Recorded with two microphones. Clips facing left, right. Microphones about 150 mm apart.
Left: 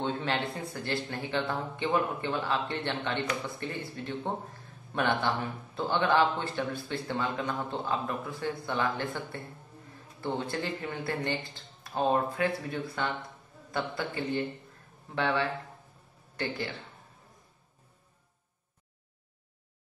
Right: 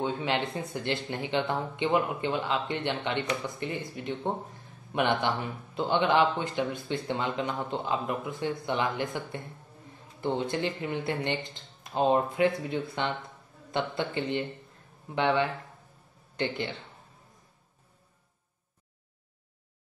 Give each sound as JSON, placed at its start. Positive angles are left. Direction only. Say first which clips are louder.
{"t": 0.0, "sound": "a man's voice", "louder": "right 2 dB", "side_deg": -15}